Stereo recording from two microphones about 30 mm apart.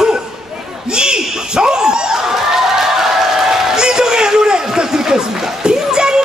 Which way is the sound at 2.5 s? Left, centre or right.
Centre.